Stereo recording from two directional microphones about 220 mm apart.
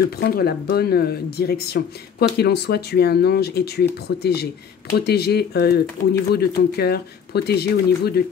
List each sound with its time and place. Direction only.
0.2 s speech: 45° left (ahead or behind)
6.0 s speech: 70° left (ahead or behind)
6.3 s speech: 45° left (ahead or behind)